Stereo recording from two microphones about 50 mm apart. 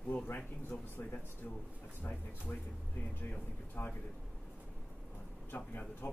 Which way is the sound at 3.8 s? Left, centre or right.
Left.